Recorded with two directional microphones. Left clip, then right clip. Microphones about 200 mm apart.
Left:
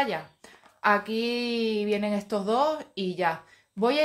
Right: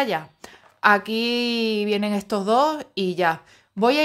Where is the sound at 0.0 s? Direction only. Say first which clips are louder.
Right 4 dB; 50° right (ahead or behind).